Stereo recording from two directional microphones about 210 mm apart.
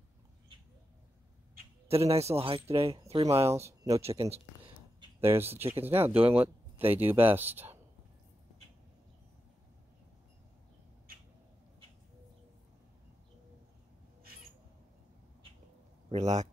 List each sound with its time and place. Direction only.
1.9 s a man's voice: 30° right (ahead or behind)
5.2 s speech: 10° right (ahead or behind)
16.1 s a man's voice: 35° right (ahead or behind)